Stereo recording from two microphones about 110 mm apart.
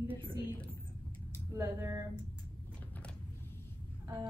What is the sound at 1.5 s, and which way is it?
Speech, 25° right (ahead or behind).